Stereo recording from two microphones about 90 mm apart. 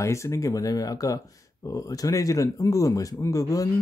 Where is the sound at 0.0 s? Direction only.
35° left (ahead or behind).